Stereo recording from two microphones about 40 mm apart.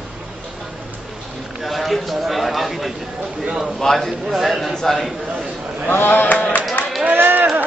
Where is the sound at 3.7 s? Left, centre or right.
Centre.